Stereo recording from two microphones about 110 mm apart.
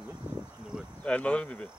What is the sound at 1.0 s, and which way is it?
Speech, 10° left (ahead or behind).